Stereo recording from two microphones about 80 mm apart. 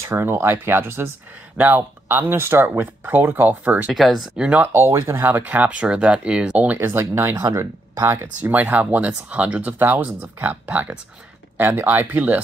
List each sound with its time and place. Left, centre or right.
0.0 s speech: right
3.9 s speech: centre
4.7 s speech: right
7.3 s speech: right